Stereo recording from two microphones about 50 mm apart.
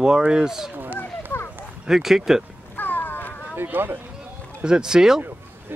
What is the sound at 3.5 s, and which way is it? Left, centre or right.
Speech, right.